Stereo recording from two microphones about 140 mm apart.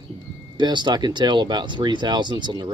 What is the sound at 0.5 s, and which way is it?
Speech, 30° right (ahead or behind).